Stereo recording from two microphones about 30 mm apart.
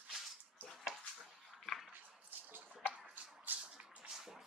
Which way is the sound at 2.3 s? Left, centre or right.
Right.